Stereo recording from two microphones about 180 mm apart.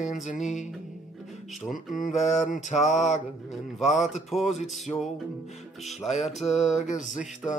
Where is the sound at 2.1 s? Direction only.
40° left (ahead or behind).